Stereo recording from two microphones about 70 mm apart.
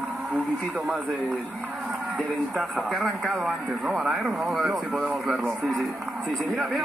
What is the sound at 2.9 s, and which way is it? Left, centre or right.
A man's voice, centre.